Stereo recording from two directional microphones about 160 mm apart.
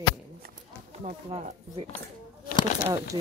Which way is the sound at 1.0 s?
45° right (ahead or behind).